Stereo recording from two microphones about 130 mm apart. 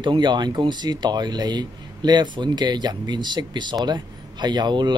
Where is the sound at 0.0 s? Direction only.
35° right (ahead or behind).